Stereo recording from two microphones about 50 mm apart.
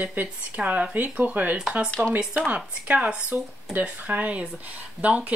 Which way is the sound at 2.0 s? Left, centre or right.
Centre.